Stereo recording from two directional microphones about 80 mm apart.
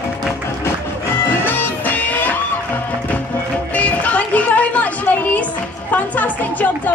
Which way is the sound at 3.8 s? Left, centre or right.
Centre.